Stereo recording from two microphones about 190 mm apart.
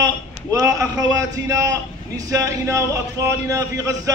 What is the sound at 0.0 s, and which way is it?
A man's voice, 20° right (ahead or behind).